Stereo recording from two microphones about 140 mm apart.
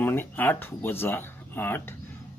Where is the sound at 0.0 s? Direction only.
15° left (ahead or behind).